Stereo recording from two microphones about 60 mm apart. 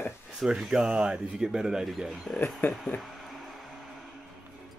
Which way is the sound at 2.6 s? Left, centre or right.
Left.